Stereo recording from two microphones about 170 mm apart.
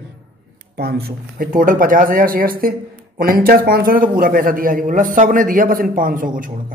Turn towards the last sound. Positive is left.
turn(degrees=-50)  # may be behind; listen again after turning